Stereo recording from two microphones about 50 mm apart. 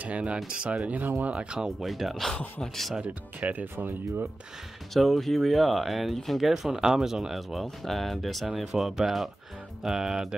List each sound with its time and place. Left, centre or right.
0.0 s speech: right
1.8 s speech: centre
3.0 s speech: right
4.9 s speech: centre